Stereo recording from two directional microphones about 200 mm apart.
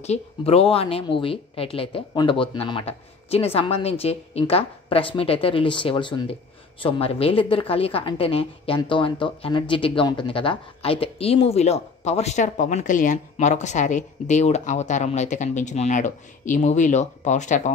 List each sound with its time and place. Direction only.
0.0 s a woman's voice: 30° left (ahead or behind)